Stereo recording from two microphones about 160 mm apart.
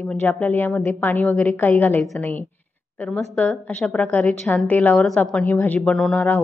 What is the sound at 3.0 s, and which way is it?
A woman's voice, 5° left (ahead or behind).